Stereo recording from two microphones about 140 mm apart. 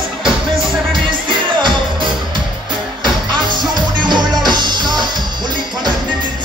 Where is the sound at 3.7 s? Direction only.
30° right (ahead or behind).